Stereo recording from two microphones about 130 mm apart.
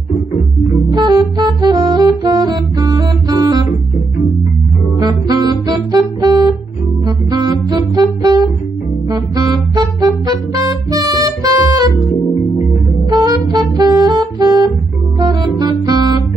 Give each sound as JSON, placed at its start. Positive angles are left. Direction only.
{"t": 0.9, "sound": "saxophone", "side_deg": -30}
{"t": 5.0, "sound": "music", "side_deg": -30}
{"t": 13.1, "sound": "music", "side_deg": -30}